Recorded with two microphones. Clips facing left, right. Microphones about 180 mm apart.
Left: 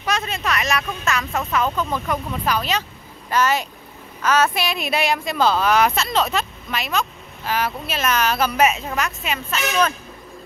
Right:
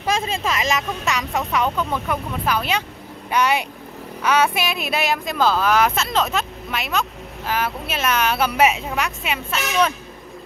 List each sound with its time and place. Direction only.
0.2 s speech: 25° right (ahead or behind); by 9.9 s 10° right (ahead or behind)